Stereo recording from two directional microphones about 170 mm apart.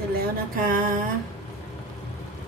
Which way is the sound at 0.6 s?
55° right (ahead or behind).